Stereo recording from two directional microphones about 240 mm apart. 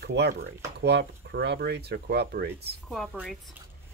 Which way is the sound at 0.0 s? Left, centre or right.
Right.